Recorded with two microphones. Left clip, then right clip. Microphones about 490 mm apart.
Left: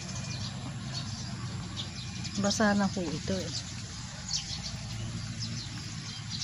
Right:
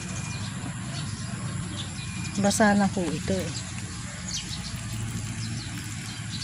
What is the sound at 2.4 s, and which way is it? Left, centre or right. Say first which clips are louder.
Speech: right 6 dB; left.